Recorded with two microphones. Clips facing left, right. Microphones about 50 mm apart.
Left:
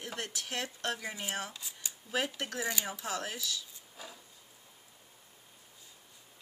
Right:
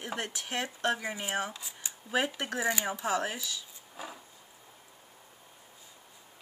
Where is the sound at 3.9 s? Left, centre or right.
Right.